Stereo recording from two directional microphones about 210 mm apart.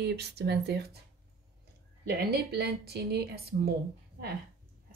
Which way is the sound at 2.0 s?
50° right (ahead or behind).